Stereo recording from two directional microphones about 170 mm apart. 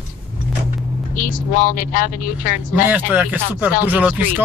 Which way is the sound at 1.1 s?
50° left (ahead or behind).